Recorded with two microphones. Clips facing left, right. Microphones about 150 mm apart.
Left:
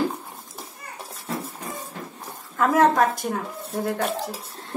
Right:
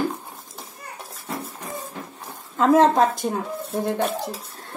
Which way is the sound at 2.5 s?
25° right (ahead or behind).